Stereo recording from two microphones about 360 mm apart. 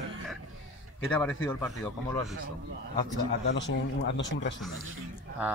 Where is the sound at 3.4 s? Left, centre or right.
Left.